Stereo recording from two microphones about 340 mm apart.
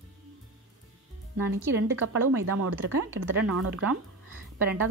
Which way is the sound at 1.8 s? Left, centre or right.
Right.